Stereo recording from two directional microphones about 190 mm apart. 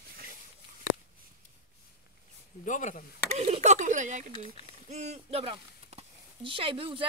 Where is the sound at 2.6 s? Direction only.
40° left (ahead or behind).